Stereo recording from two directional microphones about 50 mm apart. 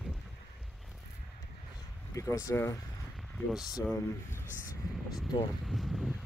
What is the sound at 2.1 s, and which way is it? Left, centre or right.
Speech, left.